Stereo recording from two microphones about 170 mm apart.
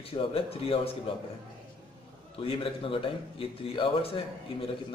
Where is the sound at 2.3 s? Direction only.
30° left (ahead or behind).